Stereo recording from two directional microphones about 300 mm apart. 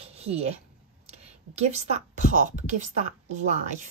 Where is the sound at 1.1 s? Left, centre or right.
Right.